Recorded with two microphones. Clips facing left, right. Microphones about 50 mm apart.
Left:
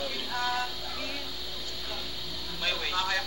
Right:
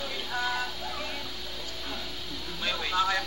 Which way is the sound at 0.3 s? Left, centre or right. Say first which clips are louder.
Right 1 dB; centre.